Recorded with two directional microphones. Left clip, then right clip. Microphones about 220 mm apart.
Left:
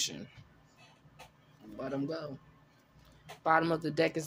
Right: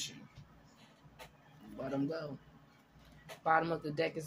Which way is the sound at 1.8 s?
20° left (ahead or behind).